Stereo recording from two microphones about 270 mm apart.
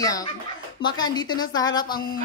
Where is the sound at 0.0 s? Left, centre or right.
Centre.